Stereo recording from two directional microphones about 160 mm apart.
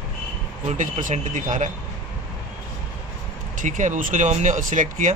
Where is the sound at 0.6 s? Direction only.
50° right (ahead or behind).